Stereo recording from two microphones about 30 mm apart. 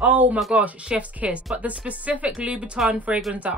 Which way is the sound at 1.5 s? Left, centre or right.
Right.